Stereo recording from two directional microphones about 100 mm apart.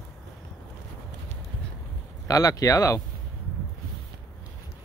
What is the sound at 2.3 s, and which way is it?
Speech, 35° left (ahead or behind).